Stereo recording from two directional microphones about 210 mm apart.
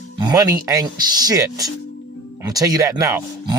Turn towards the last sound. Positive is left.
turn(degrees=-15)  # may be behind; listen again after turning